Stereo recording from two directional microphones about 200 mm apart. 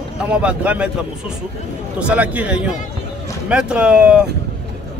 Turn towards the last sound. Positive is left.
turn(degrees=-5)  # may be behind; listen again after turning